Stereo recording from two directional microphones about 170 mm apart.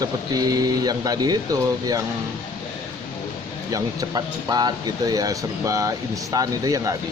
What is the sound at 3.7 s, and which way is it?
Speech, 20° right (ahead or behind).